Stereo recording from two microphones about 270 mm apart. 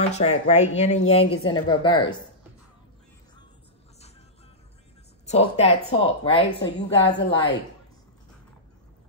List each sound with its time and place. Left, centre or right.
0.0 s speech: left
5.2 s speech: left